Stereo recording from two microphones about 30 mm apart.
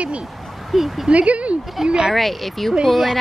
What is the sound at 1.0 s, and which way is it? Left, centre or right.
Speech, right.